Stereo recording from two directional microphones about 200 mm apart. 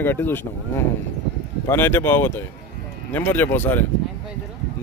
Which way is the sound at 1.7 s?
10° left (ahead or behind).